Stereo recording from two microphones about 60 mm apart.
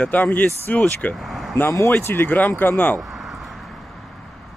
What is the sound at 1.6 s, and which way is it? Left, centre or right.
Speech, left.